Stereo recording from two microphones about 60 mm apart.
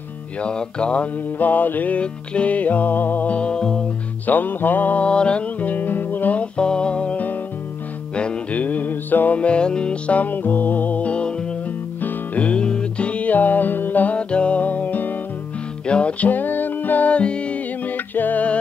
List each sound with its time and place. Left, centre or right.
0.4 s music: centre
1.4 s music: left; by 3.8 s centre
4.3 s music: left